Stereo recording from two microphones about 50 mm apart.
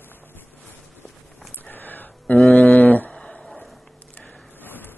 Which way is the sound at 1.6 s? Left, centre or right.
Left.